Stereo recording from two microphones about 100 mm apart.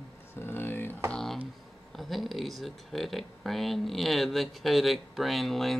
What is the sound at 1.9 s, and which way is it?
Speech, centre (ahead or behind).